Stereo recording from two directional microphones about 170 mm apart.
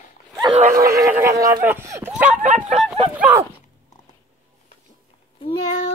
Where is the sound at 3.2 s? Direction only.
10° right (ahead or behind).